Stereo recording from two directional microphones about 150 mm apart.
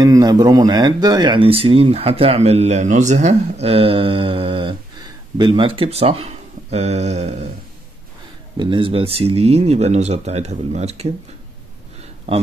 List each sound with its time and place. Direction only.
0.0 s speech: 25° right (ahead or behind); by 7.4 s 45° right (ahead or behind)
8.5 s speech: 35° right (ahead or behind)